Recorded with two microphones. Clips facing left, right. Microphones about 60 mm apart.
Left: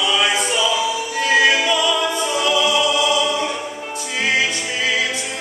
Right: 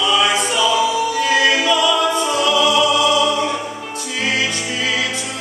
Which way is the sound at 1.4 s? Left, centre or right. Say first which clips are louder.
Right 1 dB; centre.